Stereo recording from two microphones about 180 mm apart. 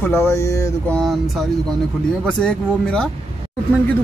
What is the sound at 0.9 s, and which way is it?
Speech, centre (ahead or behind).